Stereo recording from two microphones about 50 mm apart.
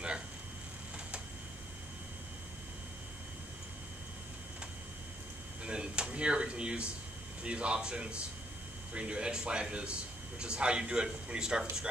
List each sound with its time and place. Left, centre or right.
5.6 s a man's voice: centre